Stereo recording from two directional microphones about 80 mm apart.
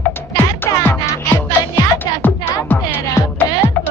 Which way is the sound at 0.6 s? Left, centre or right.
Left.